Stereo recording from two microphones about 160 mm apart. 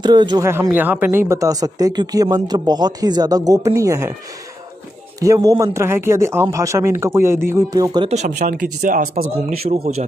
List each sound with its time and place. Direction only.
0.0 s speech: 25° right (ahead or behind)
0.5 s speech: 15° right (ahead or behind)
5.2 s speech: 20° right (ahead or behind)
8.1 s speech: 45° right (ahead or behind)